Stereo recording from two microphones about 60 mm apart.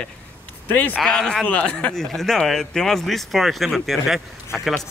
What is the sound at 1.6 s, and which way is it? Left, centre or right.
Speech, left.